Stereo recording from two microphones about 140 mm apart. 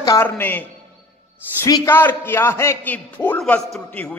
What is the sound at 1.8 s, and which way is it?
A man's voice, 15° left (ahead or behind).